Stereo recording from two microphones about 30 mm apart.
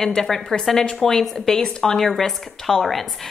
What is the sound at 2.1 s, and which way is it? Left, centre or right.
Speech, centre.